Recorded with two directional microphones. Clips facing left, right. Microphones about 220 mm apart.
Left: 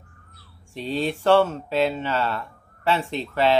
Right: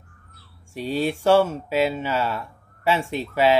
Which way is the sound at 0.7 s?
10° right (ahead or behind).